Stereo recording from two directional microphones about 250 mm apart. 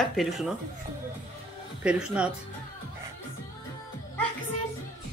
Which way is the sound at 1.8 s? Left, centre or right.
Centre.